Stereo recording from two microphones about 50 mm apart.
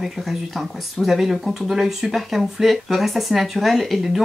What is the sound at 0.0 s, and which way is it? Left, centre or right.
Speech, centre.